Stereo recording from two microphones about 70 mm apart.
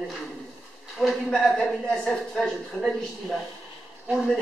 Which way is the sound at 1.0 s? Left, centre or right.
Centre.